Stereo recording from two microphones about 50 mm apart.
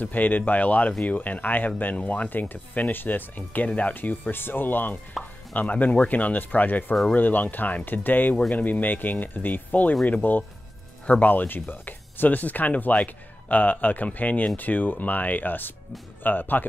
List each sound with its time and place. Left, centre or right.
0.0 s speech: left
3.9 s speech: left